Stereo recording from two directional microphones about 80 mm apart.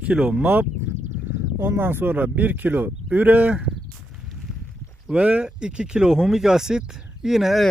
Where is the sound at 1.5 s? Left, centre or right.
Right.